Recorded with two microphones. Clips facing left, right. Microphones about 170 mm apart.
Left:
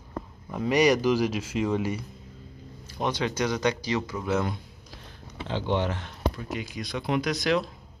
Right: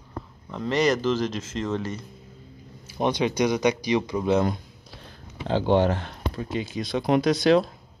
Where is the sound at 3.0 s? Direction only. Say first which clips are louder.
Right 5 dB; 15° right (ahead or behind).